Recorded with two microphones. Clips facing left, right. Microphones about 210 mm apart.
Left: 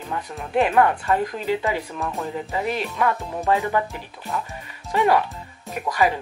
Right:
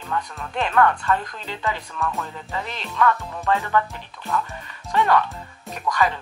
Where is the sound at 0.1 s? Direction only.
20° left (ahead or behind).